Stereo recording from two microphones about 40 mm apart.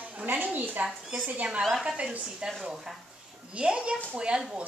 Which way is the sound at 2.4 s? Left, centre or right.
Centre.